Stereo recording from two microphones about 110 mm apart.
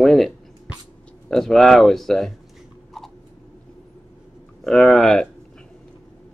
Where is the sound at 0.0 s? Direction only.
Centre (ahead or behind).